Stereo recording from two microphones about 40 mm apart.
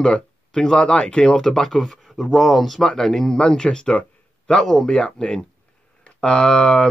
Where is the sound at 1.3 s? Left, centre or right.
Centre.